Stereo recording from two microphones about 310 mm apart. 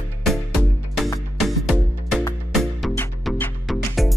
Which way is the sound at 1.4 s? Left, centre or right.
Centre.